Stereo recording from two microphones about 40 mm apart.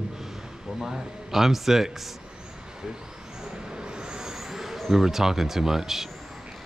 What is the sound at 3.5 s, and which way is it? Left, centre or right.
Vehicle, right.